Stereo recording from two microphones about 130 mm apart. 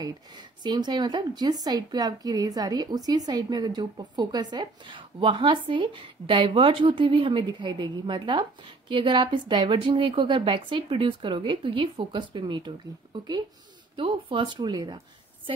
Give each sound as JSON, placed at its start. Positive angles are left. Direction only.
{"t": 0.7, "sound": "a woman's voice", "side_deg": -35}